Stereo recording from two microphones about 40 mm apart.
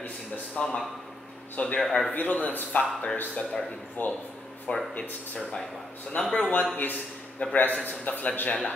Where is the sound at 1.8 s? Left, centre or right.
Centre.